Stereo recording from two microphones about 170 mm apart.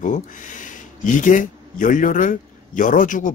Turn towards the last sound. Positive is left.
turn(degrees=50)  # may be behind; listen again after turning